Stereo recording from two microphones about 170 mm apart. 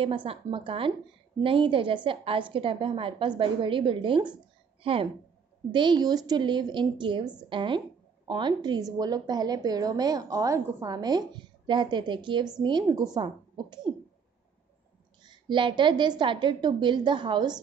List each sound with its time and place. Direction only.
0.0 s a woman's voice: 30° right (ahead or behind)
5.7 s a woman's voice: 25° right (ahead or behind)
15.2 s a woman's voice: 25° right (ahead or behind)